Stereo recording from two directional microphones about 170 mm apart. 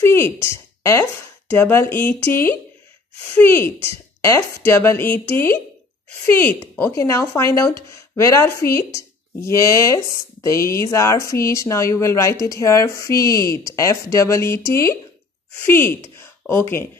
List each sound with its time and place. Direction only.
0.0 s speech: 15° left (ahead or behind)
3.3 s speech: 15° left (ahead or behind)
15.6 s speech: 15° left (ahead or behind)